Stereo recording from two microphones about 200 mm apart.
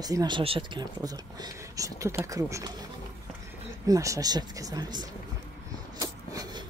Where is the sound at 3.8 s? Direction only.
15° right (ahead or behind).